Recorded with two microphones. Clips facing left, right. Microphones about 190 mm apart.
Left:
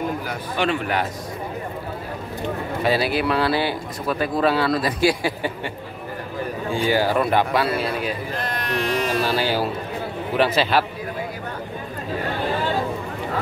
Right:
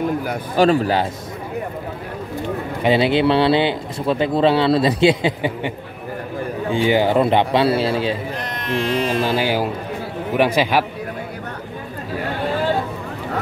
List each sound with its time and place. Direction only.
0.6 s speech: 35° right (ahead or behind)
2.8 s speech: 20° right (ahead or behind)
6.7 s a man's voice: 20° right (ahead or behind)